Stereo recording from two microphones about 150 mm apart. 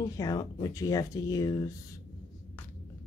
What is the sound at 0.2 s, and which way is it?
Speech, 25° left (ahead or behind).